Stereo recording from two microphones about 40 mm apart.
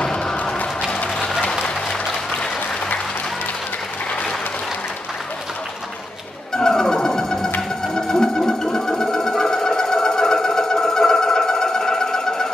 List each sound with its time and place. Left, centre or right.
0.0 s a sound: centre
1.5 s applause: centre
6.5 s music: centre
7.8 s sewing machine: centre